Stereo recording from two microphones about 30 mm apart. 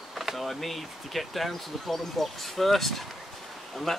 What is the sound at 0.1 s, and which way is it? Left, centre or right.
Speech, centre.